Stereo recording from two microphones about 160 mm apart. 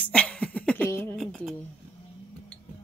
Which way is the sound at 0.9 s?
15° left (ahead or behind).